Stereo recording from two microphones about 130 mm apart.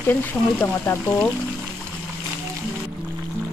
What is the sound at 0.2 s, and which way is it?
Speech, 15° left (ahead or behind).